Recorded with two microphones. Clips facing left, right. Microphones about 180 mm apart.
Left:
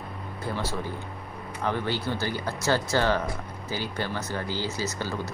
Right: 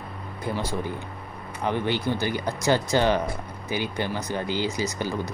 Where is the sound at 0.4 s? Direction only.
15° right (ahead or behind).